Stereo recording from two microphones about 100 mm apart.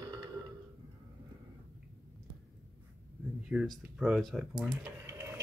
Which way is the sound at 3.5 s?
10° right (ahead or behind).